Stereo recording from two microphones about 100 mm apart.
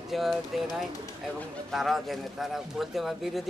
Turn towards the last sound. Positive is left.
turn(degrees=0)  # may be behind; listen again after turning